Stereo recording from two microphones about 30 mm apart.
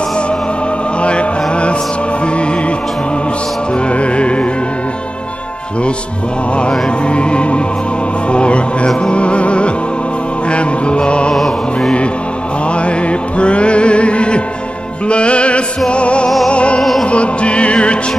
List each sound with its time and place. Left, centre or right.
1.0 s chant: left
3.9 s music: left
7.1 s music: left
11.3 s music: centre
13.4 s music: left